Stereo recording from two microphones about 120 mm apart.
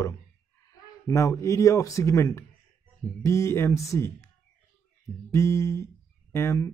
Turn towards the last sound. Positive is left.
turn(degrees=25)  # may be behind; listen again after turning